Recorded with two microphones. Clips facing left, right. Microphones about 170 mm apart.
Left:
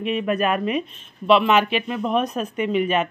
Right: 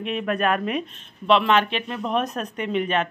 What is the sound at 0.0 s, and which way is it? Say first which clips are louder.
Speech: left 2 dB; 5° left (ahead or behind).